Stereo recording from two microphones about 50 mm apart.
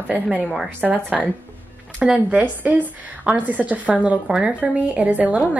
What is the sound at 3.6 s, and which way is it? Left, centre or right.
A woman's voice, right.